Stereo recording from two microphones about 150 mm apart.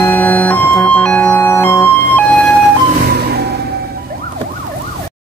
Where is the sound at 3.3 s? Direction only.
90° right.